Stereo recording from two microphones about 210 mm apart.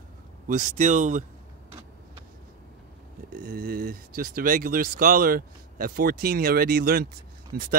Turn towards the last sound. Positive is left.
turn(degrees=-45)  # may be behind; listen again after turning